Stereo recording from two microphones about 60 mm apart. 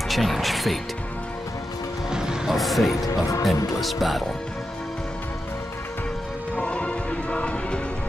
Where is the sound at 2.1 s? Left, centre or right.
Centre.